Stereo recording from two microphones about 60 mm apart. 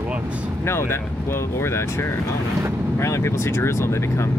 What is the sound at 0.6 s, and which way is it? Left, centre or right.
Speech, left.